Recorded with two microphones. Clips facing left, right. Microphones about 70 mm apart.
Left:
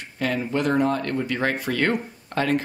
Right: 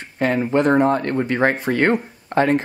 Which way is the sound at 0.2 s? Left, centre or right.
Right.